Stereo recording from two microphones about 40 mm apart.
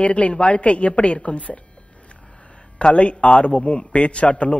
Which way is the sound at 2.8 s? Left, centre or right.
Left.